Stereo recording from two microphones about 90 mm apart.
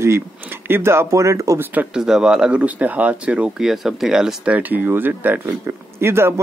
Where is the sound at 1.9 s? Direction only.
5° right (ahead or behind).